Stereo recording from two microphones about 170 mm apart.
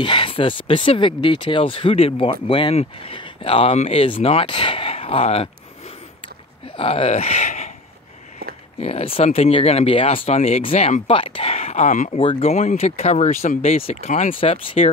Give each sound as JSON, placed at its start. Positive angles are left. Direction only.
{"t": 0.0, "sound": "speech", "side_deg": 30}
{"t": 6.8, "sound": "speech", "side_deg": 35}
{"t": 8.8, "sound": "speech", "side_deg": 35}
{"t": 12.2, "sound": "speech", "side_deg": 35}